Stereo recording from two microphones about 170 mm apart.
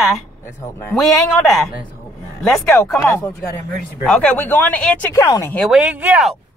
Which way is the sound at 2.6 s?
15° left (ahead or behind).